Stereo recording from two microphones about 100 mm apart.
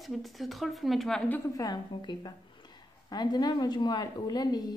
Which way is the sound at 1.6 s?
45° left (ahead or behind).